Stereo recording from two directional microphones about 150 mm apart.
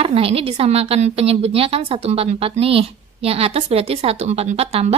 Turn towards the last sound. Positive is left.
turn(degrees=-45)  # may be behind; listen again after turning